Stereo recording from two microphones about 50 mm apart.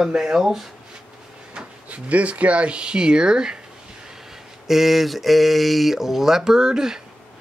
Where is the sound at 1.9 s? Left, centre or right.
Right.